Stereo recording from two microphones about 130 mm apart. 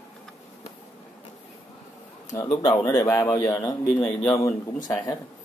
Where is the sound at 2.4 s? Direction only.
30° left (ahead or behind).